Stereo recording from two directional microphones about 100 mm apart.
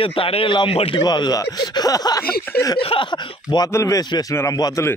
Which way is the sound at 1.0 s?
45° left (ahead or behind).